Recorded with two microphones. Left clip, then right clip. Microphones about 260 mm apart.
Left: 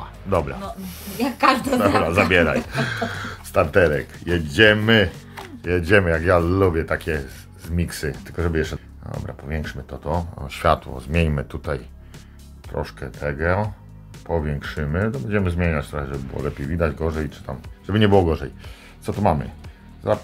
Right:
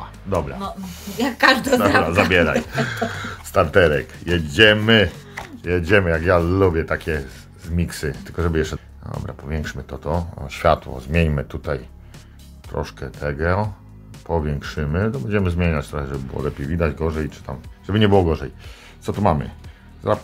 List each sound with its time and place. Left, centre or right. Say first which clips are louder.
0.0 s speech: left 1 dB; centre
1.2 s a woman's voice: right 2 dB; right
2.3 s speech: right 1 dB; centre